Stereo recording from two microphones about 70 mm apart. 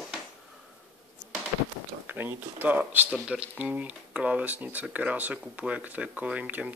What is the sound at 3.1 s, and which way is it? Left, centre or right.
Speech, centre.